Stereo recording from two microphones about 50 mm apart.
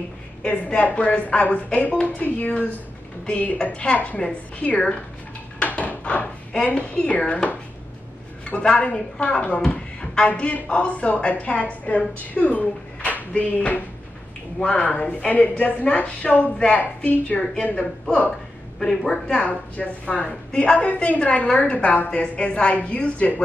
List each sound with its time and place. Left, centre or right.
0.4 s a woman's voice: left
5.6 s drawer open or close: left
8.5 s a woman's voice: left
14.6 s a woman's voice: left
18.8 s a woman's voice: centre
19.3 s a woman's voice: left